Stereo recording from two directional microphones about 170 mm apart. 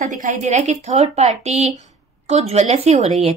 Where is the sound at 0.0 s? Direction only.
50° right (ahead or behind).